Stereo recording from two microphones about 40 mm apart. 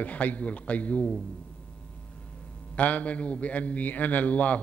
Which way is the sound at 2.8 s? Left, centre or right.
Left.